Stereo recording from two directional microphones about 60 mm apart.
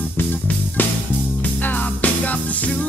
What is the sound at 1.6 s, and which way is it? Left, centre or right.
Music, left.